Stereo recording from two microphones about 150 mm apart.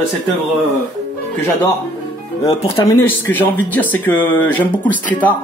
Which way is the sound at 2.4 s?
40° left (ahead or behind).